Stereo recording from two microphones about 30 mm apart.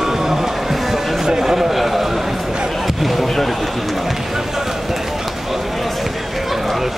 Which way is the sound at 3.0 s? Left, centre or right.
Centre.